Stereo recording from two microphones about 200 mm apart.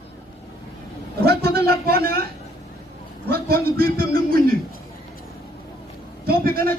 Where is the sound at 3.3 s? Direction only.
50° right (ahead or behind).